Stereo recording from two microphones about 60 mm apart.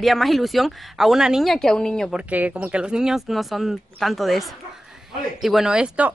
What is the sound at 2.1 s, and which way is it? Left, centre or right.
Speech, right.